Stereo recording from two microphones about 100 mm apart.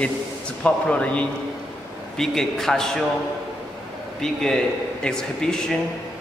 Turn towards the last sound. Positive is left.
turn(degrees=5)  # may be behind; listen again after turning